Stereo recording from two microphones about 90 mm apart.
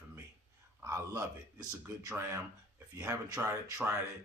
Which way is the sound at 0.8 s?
35° right (ahead or behind).